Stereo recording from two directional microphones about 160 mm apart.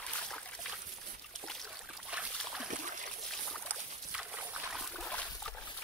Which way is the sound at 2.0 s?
10° right (ahead or behind).